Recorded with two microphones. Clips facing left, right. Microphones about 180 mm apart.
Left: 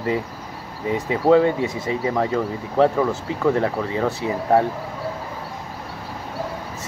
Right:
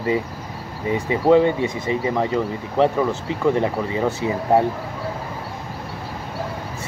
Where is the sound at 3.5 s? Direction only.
Centre (ahead or behind).